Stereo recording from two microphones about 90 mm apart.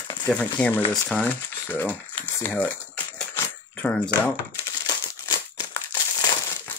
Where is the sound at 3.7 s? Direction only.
15° left (ahead or behind).